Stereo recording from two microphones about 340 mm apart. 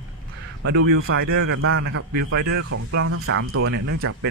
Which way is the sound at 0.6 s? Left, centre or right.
Right.